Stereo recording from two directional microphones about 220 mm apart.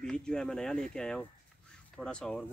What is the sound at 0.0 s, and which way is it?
Speech, 5° left (ahead or behind).